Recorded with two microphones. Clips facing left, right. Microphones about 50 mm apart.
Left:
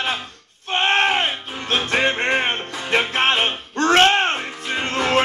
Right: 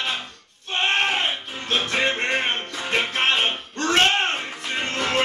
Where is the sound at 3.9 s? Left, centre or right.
Left.